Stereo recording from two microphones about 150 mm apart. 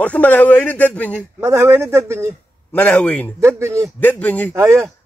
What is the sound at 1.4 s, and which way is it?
Speech, 15° right (ahead or behind).